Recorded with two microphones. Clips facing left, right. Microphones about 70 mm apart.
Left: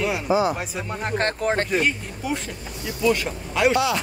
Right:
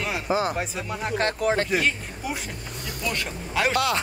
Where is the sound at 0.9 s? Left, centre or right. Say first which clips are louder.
Left 2 dB; left.